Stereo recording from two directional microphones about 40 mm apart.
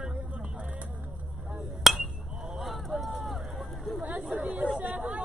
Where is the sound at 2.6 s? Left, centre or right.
Centre.